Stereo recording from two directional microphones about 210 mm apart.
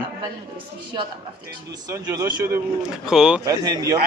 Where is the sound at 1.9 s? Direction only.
15° right (ahead or behind).